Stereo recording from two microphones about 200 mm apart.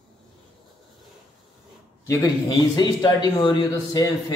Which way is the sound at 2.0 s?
20° left (ahead or behind).